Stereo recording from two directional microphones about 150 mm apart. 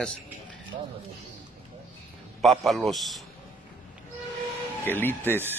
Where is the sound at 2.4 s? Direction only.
Centre (ahead or behind).